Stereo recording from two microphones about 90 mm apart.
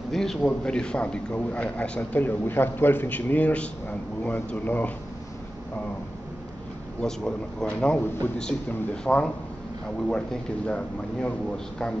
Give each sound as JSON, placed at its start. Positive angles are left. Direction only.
{"t": 0.1, "sound": "a man's voice", "side_deg": 5}
{"t": 7.0, "sound": "a man's voice", "side_deg": 10}